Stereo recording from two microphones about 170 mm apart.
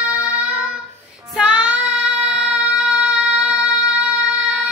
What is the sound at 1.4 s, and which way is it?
Child singing, 5° right (ahead or behind).